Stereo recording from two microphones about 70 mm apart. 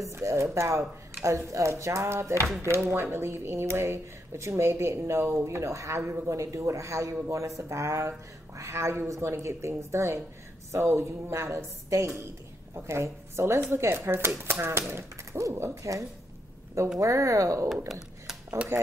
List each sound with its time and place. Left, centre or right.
0.0 s a woman's voice: right